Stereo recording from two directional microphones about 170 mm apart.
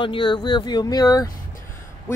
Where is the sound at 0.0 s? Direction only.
30° left (ahead or behind).